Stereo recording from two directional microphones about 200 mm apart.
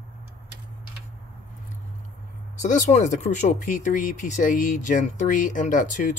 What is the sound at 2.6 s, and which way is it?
Speech, 40° left (ahead or behind).